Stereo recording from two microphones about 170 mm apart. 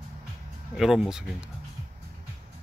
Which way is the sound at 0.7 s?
Centre (ahead or behind).